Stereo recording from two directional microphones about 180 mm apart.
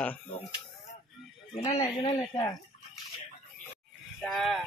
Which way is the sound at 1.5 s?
25° left (ahead or behind).